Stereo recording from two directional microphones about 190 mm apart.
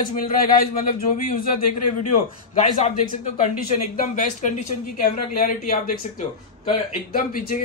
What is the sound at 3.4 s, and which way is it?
Speech, 40° left (ahead or behind).